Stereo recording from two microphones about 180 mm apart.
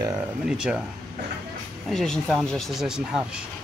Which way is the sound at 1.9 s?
5° left (ahead or behind).